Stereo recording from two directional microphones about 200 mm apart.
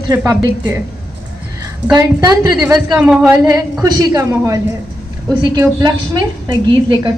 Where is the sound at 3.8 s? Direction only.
20° right (ahead or behind).